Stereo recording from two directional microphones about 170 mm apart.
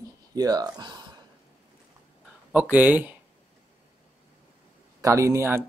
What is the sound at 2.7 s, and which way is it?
Speech, 10° right (ahead or behind).